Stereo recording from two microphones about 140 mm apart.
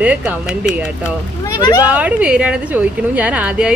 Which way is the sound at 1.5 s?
30° left (ahead or behind).